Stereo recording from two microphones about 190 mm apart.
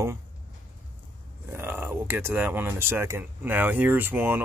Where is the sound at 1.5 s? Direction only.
10° right (ahead or behind).